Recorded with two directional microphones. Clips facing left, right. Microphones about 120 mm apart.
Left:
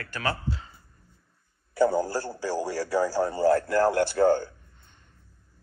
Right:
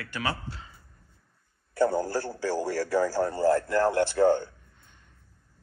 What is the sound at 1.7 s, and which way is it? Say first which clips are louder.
A man's voice: left 2 dB; 5° left (ahead or behind).